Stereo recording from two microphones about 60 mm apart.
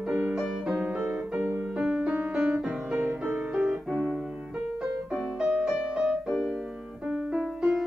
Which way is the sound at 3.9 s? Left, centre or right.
Centre.